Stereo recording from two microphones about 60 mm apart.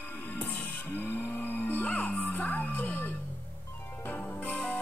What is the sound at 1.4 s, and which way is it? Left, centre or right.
Music, left.